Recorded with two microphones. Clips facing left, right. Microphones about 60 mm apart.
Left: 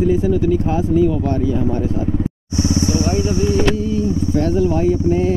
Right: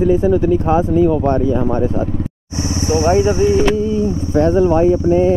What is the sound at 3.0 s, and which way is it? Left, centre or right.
Speech, right.